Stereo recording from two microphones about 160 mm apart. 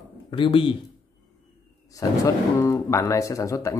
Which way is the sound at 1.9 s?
20° left (ahead or behind).